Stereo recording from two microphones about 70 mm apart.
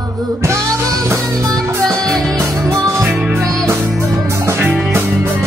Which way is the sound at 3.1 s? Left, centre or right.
Right.